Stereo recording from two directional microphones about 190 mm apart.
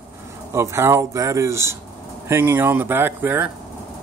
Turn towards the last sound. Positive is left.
turn(degrees=-10)  # may be behind; listen again after turning